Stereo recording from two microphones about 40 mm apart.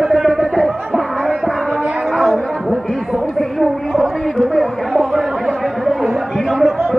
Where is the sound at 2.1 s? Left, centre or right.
Centre.